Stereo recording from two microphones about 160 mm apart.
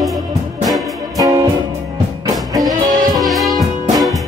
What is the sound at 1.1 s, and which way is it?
Music, 25° right (ahead or behind).